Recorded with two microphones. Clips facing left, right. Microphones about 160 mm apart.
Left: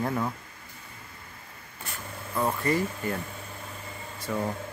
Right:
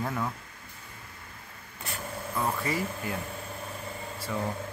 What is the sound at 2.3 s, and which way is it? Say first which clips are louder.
Speech: left 4 dB; centre (ahead or behind).